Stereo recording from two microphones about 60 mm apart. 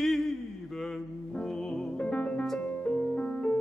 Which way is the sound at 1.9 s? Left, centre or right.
Left.